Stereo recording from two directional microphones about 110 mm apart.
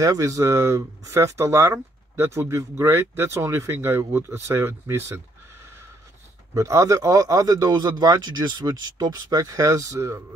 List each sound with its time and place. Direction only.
0.0 s speech: 30° right (ahead or behind)
6.5 s speech: 30° right (ahead or behind)